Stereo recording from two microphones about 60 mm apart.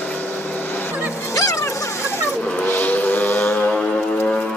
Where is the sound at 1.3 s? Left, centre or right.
Left.